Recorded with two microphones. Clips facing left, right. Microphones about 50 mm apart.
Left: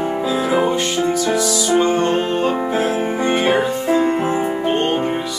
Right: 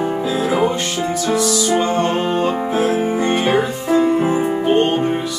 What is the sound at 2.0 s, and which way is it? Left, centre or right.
Music, centre.